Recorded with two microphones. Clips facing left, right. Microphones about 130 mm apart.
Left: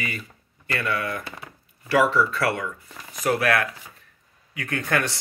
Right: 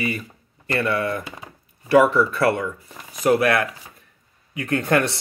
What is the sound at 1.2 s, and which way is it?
Speech, 15° right (ahead or behind).